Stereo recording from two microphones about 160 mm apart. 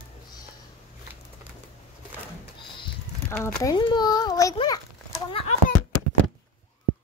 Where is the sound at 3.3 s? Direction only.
10° left (ahead or behind).